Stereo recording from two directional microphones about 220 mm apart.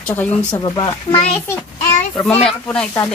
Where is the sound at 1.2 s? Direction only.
10° left (ahead or behind).